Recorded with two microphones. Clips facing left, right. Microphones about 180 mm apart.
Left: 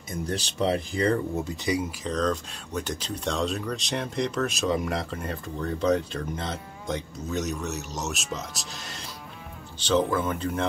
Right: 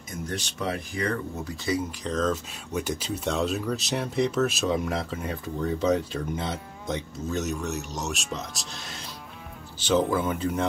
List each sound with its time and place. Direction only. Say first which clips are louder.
0.3 s speech: left 5 dB; 30° left (ahead or behind); by 2.0 s 15° left (ahead or behind)
2.0 s speech: right 1 dB; centre (ahead or behind)